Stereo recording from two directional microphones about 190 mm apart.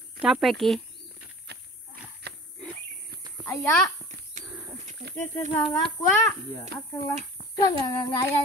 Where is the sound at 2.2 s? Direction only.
60° right (ahead or behind).